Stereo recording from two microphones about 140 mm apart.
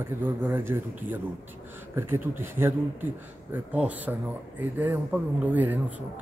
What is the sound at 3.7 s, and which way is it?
A man's voice, 10° right (ahead or behind).